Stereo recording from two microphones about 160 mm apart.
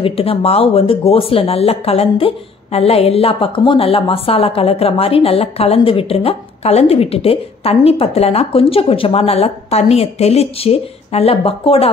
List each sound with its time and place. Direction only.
0.0 s speech: 35° left (ahead or behind)